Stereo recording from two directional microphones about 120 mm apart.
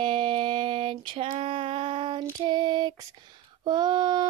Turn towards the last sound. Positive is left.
turn(degrees=-35)  # may be behind; listen again after turning